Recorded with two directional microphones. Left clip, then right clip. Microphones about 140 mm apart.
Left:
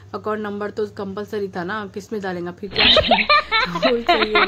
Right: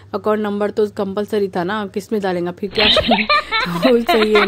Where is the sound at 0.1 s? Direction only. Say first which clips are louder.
Right 7 dB; 45° right (ahead or behind).